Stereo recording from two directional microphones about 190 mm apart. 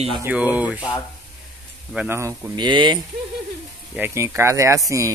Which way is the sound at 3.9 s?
10° right (ahead or behind).